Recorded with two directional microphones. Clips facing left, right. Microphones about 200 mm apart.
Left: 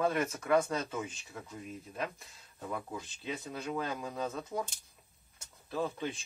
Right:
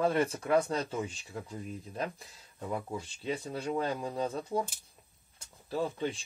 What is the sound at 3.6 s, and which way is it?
Speech, 30° right (ahead or behind).